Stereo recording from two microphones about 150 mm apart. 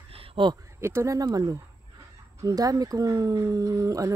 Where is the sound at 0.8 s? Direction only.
20° right (ahead or behind).